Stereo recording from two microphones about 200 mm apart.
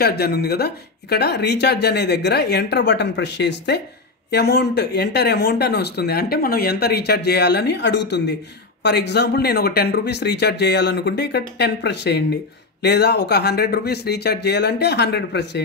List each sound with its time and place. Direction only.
0.0 s speech: 50° left (ahead or behind)